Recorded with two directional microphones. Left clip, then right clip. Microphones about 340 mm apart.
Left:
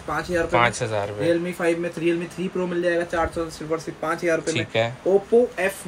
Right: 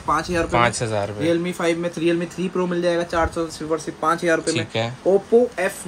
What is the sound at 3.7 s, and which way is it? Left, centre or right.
Speech, centre.